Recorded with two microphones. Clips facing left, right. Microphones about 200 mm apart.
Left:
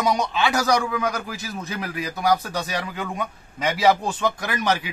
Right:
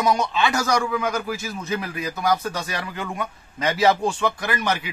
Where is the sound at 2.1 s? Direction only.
15° left (ahead or behind).